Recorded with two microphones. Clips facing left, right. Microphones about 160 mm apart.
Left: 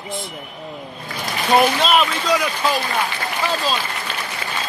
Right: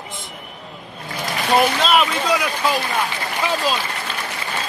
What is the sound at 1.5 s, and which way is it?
Speech, centre (ahead or behind).